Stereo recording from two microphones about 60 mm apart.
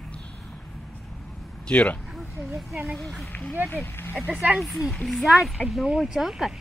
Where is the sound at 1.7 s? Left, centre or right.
Centre.